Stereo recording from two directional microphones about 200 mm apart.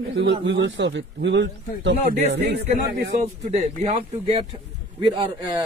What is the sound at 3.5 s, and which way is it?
Speech, 30° right (ahead or behind).